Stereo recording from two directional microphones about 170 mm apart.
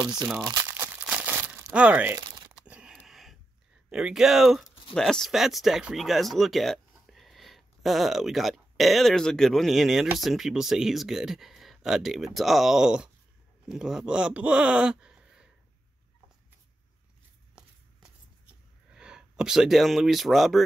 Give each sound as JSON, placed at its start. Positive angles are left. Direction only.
{"t": 0.0, "sound": "speech", "side_deg": -25}
{"t": 0.4, "sound": "crumpling", "side_deg": -20}
{"t": 2.5, "sound": "a sound", "side_deg": -5}
{"t": 3.9, "sound": "speech", "side_deg": -5}
{"t": 17.6, "sound": "a sound", "side_deg": -5}
{"t": 18.9, "sound": "speech", "side_deg": -5}